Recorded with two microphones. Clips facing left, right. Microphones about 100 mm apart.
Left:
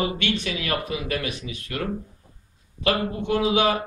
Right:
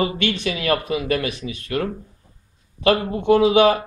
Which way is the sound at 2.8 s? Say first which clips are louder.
Right 5 dB; 45° right (ahead or behind).